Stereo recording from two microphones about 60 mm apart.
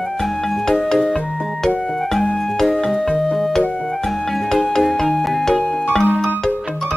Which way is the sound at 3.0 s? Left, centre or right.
Centre.